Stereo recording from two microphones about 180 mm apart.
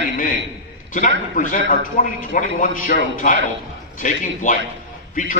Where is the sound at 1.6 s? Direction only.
45° left (ahead or behind).